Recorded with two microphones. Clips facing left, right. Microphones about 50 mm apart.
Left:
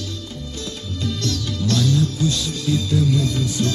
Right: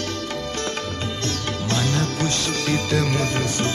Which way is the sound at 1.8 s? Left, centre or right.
Right.